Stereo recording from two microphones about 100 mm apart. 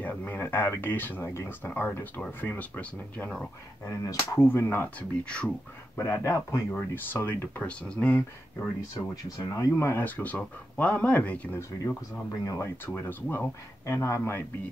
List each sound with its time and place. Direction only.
0.0 s speech: 15° left (ahead or behind)
1.7 s speech: 15° left (ahead or behind)
4.4 s speech: 20° left (ahead or behind)
5.9 s speech: 25° left (ahead or behind)
6.7 s speech: 15° left (ahead or behind)
9.1 s speech: 35° left (ahead or behind)
9.7 s speech: 25° left (ahead or behind)
11.8 s speech: 35° left (ahead or behind)
12.9 s speech: 20° left (ahead or behind)